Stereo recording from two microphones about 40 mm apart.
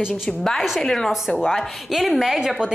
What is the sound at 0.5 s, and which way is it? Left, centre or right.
Speech, centre.